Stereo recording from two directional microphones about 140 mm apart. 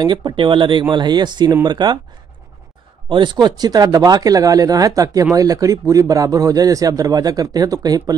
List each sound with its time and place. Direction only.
0.0 s speech: 35° right (ahead or behind)
3.1 s speech: 35° right (ahead or behind)